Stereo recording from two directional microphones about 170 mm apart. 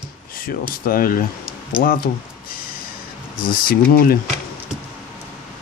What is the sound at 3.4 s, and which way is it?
Speech, 60° left (ahead or behind).